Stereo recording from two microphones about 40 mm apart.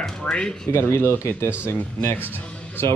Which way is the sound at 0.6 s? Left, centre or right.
Left.